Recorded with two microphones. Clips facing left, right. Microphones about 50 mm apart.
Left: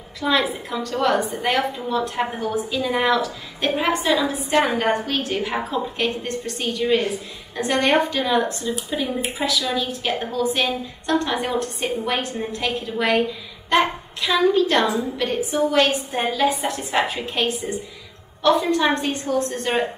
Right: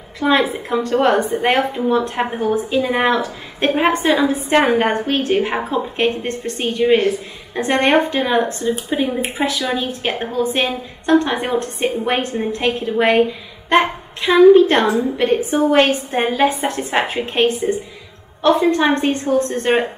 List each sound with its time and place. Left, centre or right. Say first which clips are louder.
0.2 s a woman's voice: right 5 dB; right